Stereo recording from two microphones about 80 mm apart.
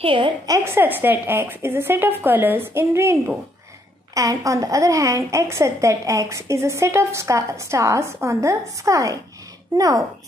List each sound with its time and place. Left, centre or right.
0.0 s a woman's voice: right
0.7 s a woman's voice: right
4.1 s a woman's voice: right